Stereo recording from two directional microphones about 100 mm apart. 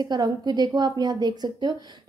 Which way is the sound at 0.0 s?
45° right (ahead or behind).